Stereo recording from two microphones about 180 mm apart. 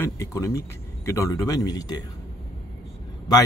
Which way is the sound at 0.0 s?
15° left (ahead or behind).